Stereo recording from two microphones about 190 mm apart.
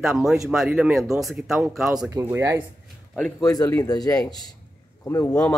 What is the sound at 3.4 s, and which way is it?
Speech, 20° left (ahead or behind).